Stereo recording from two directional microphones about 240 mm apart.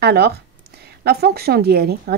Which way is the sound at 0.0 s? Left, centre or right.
Right.